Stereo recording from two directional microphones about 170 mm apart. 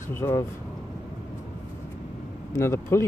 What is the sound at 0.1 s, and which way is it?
Speech, 15° left (ahead or behind).